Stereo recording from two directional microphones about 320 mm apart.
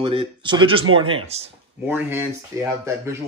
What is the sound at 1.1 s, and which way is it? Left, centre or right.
Speech, centre.